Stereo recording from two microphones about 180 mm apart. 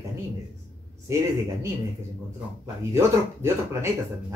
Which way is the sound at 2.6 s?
15° right (ahead or behind).